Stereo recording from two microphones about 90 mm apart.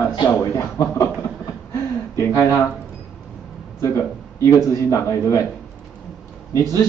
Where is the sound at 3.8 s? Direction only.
35° left (ahead or behind).